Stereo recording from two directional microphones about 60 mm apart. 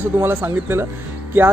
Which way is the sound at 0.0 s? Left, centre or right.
Right.